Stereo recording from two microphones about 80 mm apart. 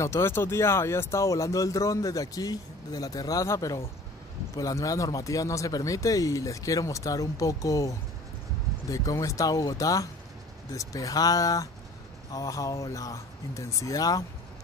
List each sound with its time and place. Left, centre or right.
0.0 s speech: left
8.9 s speech: left